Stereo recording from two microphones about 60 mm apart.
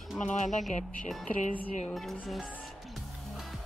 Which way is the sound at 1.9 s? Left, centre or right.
Centre.